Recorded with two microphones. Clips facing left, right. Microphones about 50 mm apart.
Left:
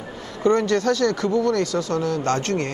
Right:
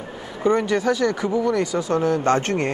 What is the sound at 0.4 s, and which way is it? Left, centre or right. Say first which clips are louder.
A man's voice: left 1 dB; centre.